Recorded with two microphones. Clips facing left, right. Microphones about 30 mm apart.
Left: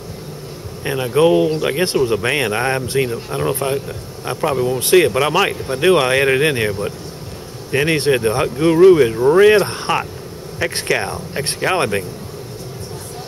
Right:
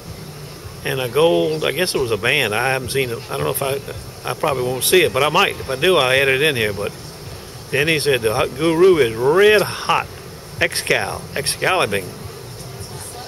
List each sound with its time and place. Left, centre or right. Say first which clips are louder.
0.8 s speech: left 2 dB; centre
4.7 s speech: left 2 dB; centre
10.6 s speech: right 2 dB; right
11.1 s speech: left 1 dB; centre